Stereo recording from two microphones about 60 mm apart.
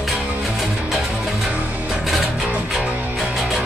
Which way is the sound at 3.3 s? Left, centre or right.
Centre.